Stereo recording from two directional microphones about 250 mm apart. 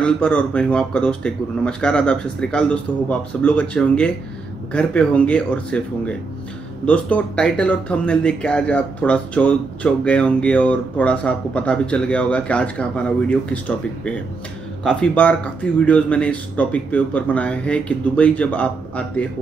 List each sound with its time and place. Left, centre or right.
0.0 s speech: centre